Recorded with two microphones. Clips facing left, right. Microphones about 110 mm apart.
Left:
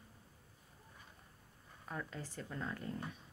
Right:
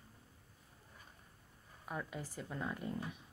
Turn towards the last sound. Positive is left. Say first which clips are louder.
# right 2 dB
turn(degrees=-10)  # may be behind; listen again after turning